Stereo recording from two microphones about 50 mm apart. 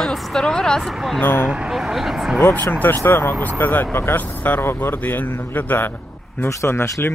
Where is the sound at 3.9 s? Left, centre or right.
Left.